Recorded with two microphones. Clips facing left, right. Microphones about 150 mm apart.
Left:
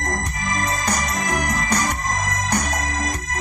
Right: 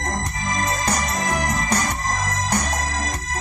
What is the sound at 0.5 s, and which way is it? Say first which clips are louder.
Music: right 1 dB; 30° right (ahead or behind).